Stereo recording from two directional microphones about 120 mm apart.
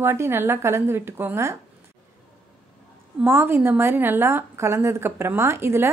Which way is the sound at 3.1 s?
20° right (ahead or behind).